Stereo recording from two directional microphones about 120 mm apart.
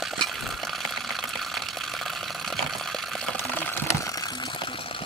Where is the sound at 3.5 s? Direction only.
20° left (ahead or behind); by 5.0 s 45° left (ahead or behind).